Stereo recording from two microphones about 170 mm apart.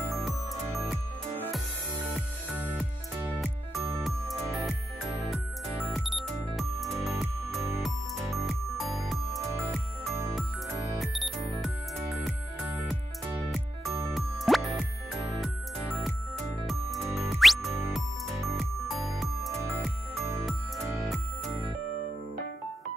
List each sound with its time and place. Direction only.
5.3 s music: centre (ahead or behind)
11.0 s music: centre (ahead or behind)
14.1 s music: centre (ahead or behind)
19.6 s music: 15° right (ahead or behind)
20.4 s music: centre (ahead or behind)